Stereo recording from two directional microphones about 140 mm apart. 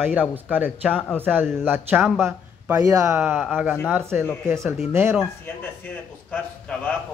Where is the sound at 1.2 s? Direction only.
15° right (ahead or behind).